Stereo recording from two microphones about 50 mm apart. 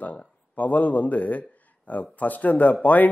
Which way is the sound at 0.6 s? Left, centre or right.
Left.